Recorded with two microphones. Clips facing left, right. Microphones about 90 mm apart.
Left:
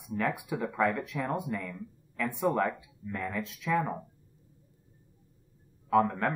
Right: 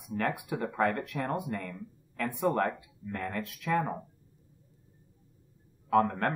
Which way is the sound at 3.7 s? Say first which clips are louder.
Even; 15° right (ahead or behind).